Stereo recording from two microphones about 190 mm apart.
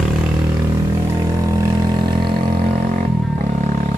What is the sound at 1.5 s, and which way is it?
Vehicle, 20° right (ahead or behind).